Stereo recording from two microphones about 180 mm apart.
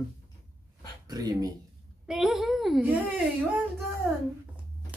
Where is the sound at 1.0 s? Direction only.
20° right (ahead or behind).